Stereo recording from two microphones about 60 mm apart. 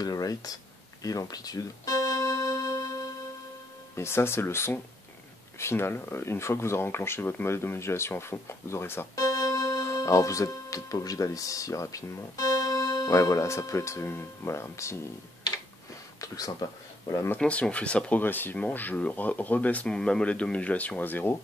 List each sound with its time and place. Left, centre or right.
0.0 s speech: left
1.0 s keyboard: left
3.9 s speech: left
9.1 s keyboard: left
10.0 s speech: left
16.2 s speech: left
17.4 s speech: left
18.2 s speech: left
19.9 s speech: centre; by 21.4 s left